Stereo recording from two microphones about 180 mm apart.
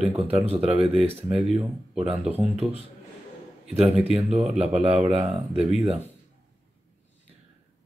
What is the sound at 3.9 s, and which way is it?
Speech, 5° right (ahead or behind).